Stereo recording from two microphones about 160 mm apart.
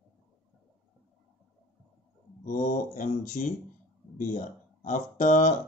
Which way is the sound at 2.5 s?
55° left (ahead or behind).